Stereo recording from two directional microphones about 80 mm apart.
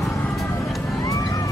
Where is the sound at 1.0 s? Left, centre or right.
Left.